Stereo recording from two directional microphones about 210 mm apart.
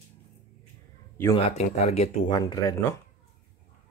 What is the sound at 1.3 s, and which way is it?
Speech, 30° left (ahead or behind).